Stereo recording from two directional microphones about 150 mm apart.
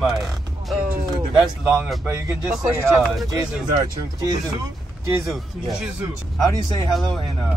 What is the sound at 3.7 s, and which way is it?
Speech, 30° right (ahead or behind).